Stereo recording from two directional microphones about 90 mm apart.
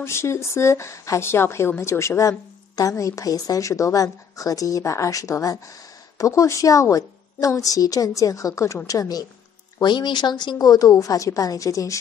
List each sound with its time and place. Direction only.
0.0 s speech: 30° left (ahead or behind)
9.8 s speech: 55° left (ahead or behind); by 12.0 s 35° left (ahead or behind)